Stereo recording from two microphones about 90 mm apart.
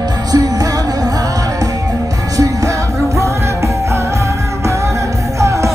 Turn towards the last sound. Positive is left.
turn(degrees=-35)  # may be behind; listen again after turning